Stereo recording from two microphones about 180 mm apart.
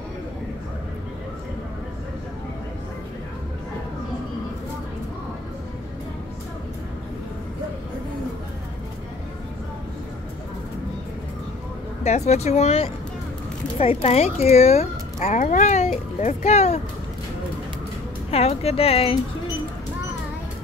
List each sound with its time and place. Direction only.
12.0 s speech: 40° left (ahead or behind)
18.3 s speech: 35° left (ahead or behind)